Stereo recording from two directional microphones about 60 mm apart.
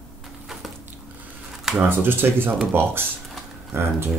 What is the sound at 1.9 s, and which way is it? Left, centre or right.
Speech, right.